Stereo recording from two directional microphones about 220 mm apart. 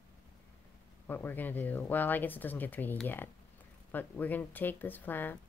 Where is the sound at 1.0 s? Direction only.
10° left (ahead or behind).